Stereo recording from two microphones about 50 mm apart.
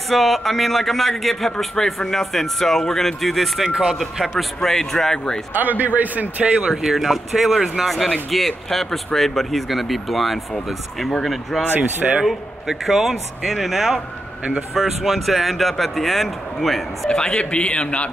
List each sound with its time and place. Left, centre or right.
0.1 s a man's voice: centre
5.5 s a man's voice: right
6.7 s a man's voice: centre
8.3 s a man's voice: centre
12.0 s a man's voice: centre
17.1 s speech: centre